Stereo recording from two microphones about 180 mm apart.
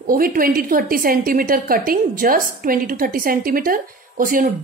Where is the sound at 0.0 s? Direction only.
50° right (ahead or behind).